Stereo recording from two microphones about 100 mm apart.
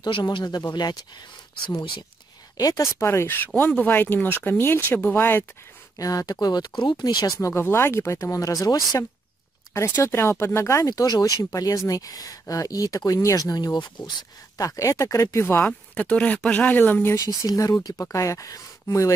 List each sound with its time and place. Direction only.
0.0 s speech: 50° left (ahead or behind)
1.7 s speech: 40° left (ahead or behind)
3.0 s speech: 25° left (ahead or behind)
5.9 s speech: 35° left (ahead or behind)
7.3 s speech: 25° left (ahead or behind)
9.8 s speech: 25° left (ahead or behind); by 14.1 s 50° left (ahead or behind)
14.6 s speech: 35° left (ahead or behind)
15.9 s speech: 10° left (ahead or behind)
17.2 s speech: 40° left (ahead or behind)